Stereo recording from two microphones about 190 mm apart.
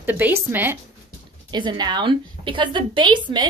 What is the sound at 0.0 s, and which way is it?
Speech, 10° right (ahead or behind).